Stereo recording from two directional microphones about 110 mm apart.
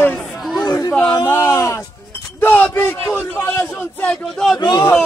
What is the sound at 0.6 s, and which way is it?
Speech, 35° left (ahead or behind).